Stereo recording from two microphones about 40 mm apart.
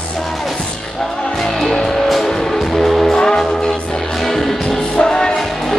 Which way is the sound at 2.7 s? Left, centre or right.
Centre.